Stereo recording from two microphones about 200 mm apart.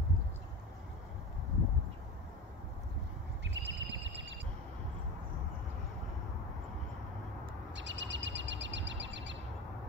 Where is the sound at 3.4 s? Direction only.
65° right (ahead or behind).